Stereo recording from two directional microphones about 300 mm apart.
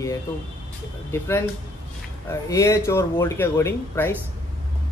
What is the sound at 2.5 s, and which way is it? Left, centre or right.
Speech, centre.